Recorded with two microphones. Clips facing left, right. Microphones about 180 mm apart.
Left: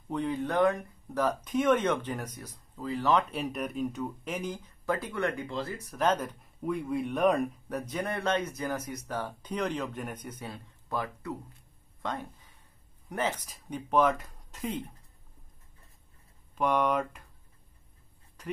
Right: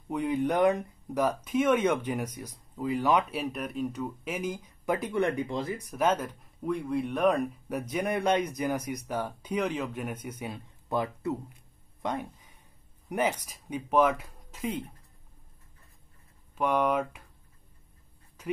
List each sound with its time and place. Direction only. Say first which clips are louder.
0.1 s speech: right 3 dB; 10° right (ahead or behind)
7.9 s speech: right 4 dB; 15° right (ahead or behind)
16.5 s speech: right 1 dB; 5° right (ahead or behind)